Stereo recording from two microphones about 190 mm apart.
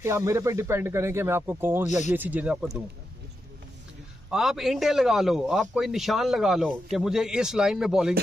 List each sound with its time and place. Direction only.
0.0 s speech: 15° right (ahead or behind)
1.9 s speech: 40° left (ahead or behind)
2.1 s speech: 10° right (ahead or behind)
4.3 s a man's voice: centre (ahead or behind)